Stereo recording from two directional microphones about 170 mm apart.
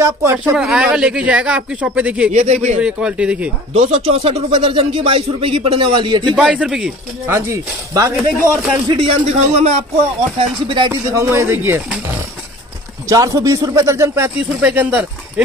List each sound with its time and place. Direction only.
0.0 s speech: 15° right (ahead or behind)
0.6 s speech: 5° right (ahead or behind)
2.3 s speech: 40° right (ahead or behind)
2.8 s speech: 5° right (ahead or behind)
3.7 s speech: 40° right (ahead or behind)
6.3 s speech: 5° right (ahead or behind)
7.2 s speech: 15° right (ahead or behind)
8.8 s speech: 35° right (ahead or behind)
10.4 s speech: 30° right (ahead or behind)
10.9 s speech: 15° right (ahead or behind)